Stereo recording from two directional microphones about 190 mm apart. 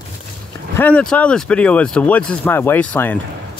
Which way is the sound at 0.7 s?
10° left (ahead or behind).